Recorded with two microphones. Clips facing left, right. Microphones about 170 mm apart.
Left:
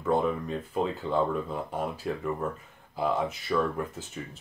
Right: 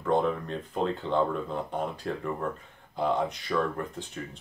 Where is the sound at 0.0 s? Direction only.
5° left (ahead or behind).